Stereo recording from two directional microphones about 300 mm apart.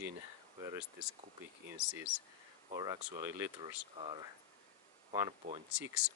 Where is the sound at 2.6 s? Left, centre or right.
Centre.